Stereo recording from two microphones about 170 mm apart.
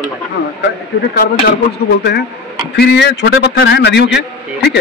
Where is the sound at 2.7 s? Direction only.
75° left (ahead or behind); by 4.2 s 90° left.